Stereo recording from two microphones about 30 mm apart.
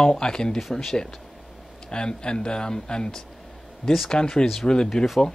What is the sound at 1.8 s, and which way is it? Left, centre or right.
Speech, left.